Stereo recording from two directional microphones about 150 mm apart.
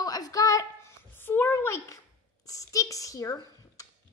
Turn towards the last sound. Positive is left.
turn(degrees=20)  # may be behind; listen again after turning